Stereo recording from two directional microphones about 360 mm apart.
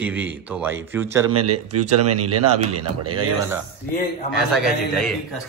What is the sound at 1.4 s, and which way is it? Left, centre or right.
Speech, right.